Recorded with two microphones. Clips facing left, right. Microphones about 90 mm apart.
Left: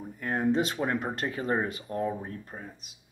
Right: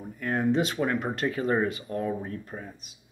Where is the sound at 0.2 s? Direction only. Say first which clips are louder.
Right 2 dB; 20° left (ahead or behind).